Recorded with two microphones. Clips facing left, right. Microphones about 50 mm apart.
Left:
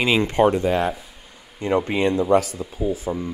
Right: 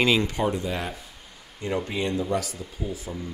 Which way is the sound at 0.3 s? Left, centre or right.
Left.